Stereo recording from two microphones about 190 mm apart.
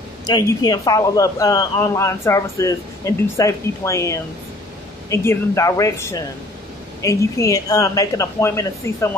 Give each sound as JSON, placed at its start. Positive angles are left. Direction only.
{"t": 0.3, "sound": "speech", "side_deg": 20}